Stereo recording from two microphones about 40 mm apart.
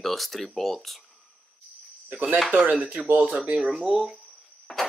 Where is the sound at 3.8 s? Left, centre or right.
Centre.